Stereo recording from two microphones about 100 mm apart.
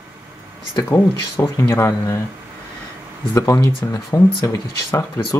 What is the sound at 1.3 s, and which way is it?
Speech, 35° left (ahead or behind).